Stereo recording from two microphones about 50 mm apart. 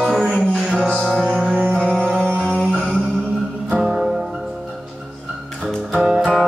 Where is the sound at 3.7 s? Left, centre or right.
Centre.